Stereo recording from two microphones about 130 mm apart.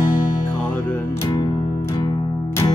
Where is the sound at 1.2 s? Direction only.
30° left (ahead or behind).